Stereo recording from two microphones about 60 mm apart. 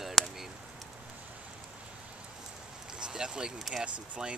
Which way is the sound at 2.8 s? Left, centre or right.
Centre.